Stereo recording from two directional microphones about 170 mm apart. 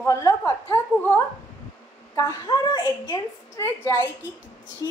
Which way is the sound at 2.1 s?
20° left (ahead or behind).